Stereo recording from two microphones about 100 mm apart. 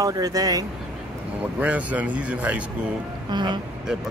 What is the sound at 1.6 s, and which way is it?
Speech, 15° right (ahead or behind).